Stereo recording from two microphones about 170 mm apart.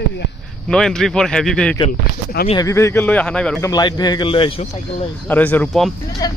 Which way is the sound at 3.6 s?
20° left (ahead or behind).